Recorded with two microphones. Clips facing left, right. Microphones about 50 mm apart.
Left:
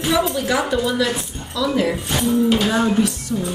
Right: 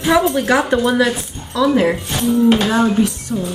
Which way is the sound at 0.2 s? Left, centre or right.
Right.